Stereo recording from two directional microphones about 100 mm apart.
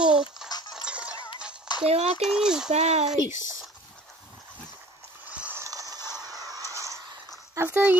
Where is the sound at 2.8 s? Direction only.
90° right.